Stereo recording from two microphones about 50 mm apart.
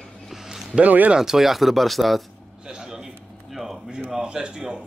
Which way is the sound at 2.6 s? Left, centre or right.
Centre.